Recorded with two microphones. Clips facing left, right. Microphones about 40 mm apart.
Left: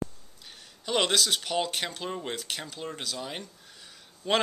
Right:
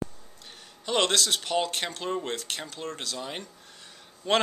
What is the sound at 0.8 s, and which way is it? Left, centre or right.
Speech, centre.